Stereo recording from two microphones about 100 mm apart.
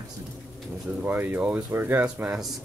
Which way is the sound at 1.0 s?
20° right (ahead or behind).